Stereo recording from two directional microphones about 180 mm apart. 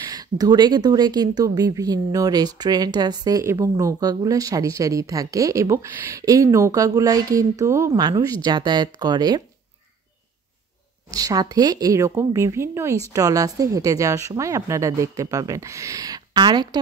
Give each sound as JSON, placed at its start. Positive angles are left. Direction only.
{"t": 0.0, "sound": "speech", "side_deg": -20}
{"t": 11.1, "sound": "speech", "side_deg": -20}